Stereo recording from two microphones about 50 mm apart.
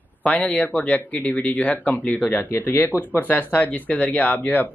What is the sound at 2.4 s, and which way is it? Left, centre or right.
Speech, left.